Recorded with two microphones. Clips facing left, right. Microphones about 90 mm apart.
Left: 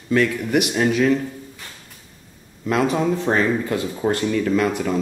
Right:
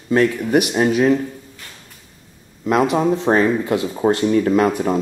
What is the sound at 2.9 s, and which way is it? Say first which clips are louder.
Speech: right 4 dB; 30° right (ahead or behind).